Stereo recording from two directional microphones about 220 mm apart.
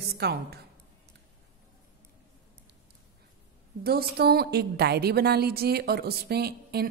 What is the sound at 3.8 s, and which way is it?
A woman's voice, 45° right (ahead or behind).